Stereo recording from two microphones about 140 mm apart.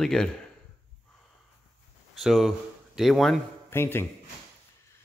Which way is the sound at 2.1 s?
5° right (ahead or behind).